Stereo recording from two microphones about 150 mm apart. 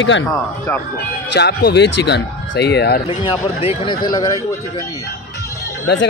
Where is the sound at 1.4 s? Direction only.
90° left.